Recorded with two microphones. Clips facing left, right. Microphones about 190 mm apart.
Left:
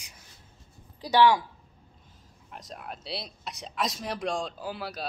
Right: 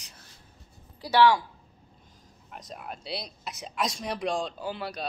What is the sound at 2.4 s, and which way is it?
A man's voice, centre (ahead or behind).